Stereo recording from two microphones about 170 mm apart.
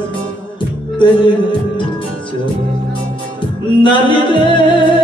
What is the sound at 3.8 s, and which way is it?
Music, 30° left (ahead or behind).